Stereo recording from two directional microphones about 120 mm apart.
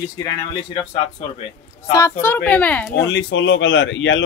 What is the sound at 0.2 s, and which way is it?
Speech, 35° left (ahead or behind).